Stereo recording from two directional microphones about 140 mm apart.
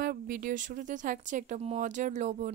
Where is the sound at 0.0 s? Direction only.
80° right.